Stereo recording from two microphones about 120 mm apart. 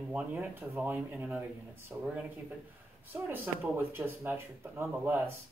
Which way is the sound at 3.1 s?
15° right (ahead or behind).